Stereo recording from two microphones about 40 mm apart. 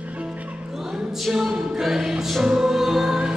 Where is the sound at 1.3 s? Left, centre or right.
Centre.